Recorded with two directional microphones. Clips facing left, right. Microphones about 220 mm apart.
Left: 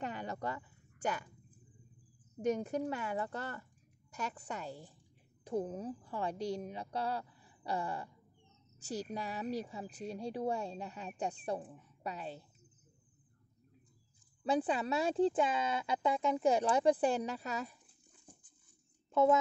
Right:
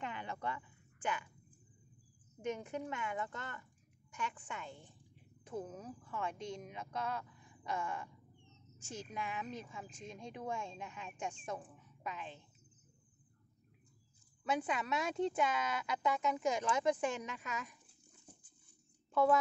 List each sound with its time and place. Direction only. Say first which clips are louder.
0.0 s a sound: left 3 dB; 40° left (ahead or behind)
2.4 s a woman's voice: left 7 dB; 40° left (ahead or behind)
14.4 s speech: left 5 dB; 35° left (ahead or behind)